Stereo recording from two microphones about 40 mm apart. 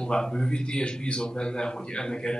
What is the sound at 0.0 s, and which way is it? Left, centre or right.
A man's voice, centre.